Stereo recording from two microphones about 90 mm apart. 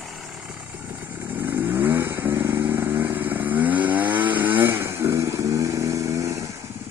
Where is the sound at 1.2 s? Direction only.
20° right (ahead or behind).